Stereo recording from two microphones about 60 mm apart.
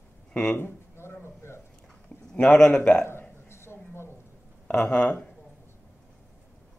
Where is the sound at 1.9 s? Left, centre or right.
Centre.